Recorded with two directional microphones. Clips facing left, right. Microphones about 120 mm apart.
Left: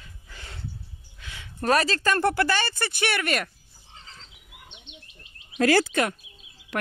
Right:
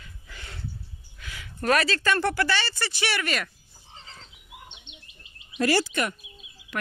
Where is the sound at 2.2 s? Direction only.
50° left (ahead or behind).